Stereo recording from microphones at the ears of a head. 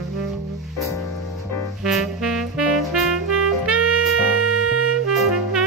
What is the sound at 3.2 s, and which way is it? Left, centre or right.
Music, right.